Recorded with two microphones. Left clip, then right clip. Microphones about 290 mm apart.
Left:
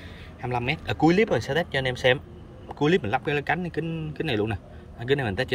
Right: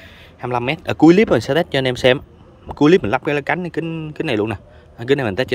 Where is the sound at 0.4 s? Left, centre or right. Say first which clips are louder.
Right 7 dB; centre.